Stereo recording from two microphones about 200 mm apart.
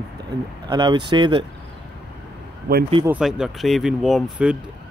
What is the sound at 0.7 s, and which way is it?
Speech, 20° right (ahead or behind).